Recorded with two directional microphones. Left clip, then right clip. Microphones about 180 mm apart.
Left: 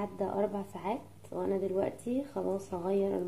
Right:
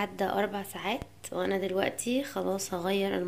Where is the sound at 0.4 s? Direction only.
10° right (ahead or behind).